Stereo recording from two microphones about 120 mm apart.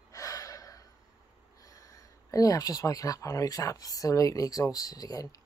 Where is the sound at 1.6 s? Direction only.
25° left (ahead or behind).